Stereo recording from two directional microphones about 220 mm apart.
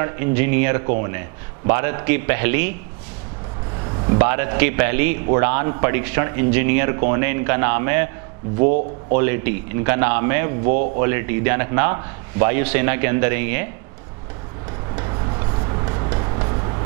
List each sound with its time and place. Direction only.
0.0 s a man's voice: 10° right (ahead or behind)
4.2 s a man's voice: 15° right (ahead or behind)
8.5 s speech: 40° right (ahead or behind)
9.1 s a man's voice: 15° right (ahead or behind)
10.6 s speech: 40° right (ahead or behind)
11.0 s a man's voice: 15° right (ahead or behind)
15.8 s vehicle: 20° right (ahead or behind)